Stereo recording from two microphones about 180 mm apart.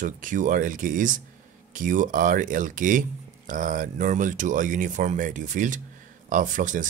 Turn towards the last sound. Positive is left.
turn(degrees=-45)  # may be behind; listen again after turning